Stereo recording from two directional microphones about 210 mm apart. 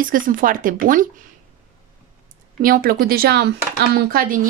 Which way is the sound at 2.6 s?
45° right (ahead or behind).